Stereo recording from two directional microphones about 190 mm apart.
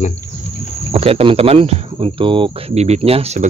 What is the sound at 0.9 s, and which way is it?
Speech, 30° right (ahead or behind).